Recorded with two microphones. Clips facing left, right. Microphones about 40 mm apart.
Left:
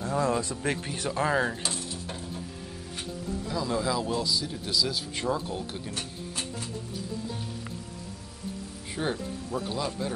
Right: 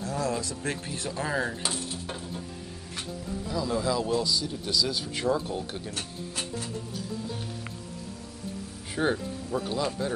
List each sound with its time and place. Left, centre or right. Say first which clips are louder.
0.0 s speech: left 3 dB; left
1.6 s cutlery: right 1 dB; centre
3.4 s speech: right 1 dB; centre
8.9 s speech: right 4 dB; centre